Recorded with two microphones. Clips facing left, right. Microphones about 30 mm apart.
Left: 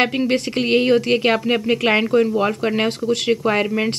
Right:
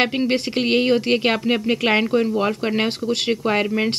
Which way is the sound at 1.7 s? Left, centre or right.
Centre.